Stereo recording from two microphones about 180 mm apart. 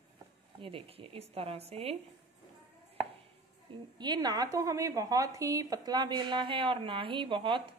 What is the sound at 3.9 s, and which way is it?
Speech, 25° right (ahead or behind).